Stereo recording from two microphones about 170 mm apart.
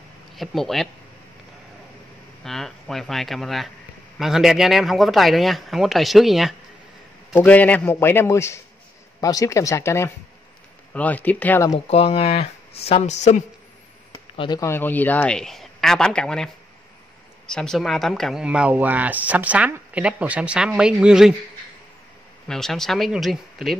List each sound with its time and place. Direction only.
0.4 s speech: centre (ahead or behind)
2.4 s a man's voice: centre (ahead or behind)
11.7 s speech: 35° left (ahead or behind)
14.3 s speech: 30° left (ahead or behind)
14.6 s speech: 15° left (ahead or behind)
17.5 s speech: 5° left (ahead or behind)
22.5 s speech: centre (ahead or behind)